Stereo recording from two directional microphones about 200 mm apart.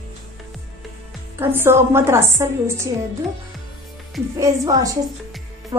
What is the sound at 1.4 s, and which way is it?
A woman's voice, 10° right (ahead or behind).